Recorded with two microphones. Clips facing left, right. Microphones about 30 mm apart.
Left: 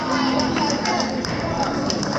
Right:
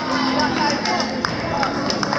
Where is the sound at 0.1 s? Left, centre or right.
Right.